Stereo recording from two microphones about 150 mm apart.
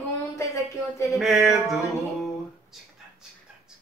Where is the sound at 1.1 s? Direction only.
Centre (ahead or behind).